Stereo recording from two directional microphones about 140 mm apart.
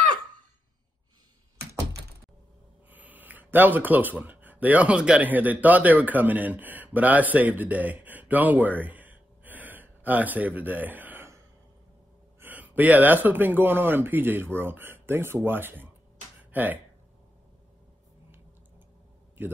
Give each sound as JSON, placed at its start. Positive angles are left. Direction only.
{"t": 2.9, "sound": "speech", "side_deg": -10}
{"t": 12.4, "sound": "speech", "side_deg": -10}